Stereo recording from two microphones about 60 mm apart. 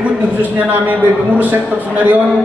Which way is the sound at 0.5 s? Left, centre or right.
Right.